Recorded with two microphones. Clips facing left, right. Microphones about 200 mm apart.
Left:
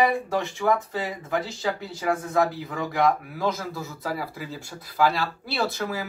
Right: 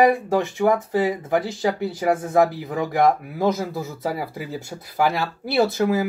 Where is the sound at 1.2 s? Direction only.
50° right (ahead or behind).